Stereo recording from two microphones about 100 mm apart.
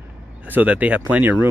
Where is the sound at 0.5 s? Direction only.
15° right (ahead or behind).